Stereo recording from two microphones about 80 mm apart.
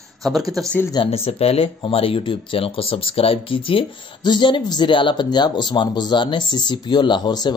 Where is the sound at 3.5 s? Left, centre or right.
Left.